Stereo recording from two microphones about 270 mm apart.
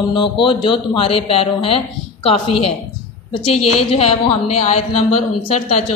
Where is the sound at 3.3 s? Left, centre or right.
Left.